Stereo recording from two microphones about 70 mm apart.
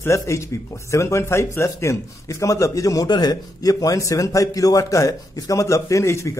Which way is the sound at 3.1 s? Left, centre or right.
Left.